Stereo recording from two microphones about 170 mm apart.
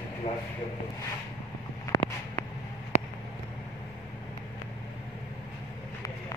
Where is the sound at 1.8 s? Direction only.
15° left (ahead or behind).